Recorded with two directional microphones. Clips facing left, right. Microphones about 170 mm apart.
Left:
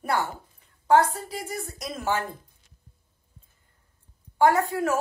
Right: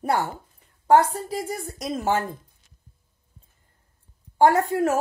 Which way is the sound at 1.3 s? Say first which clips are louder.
Right 4 dB; 35° right (ahead or behind).